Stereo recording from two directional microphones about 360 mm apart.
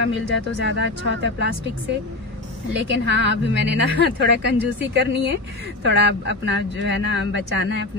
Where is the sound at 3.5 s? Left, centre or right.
Right.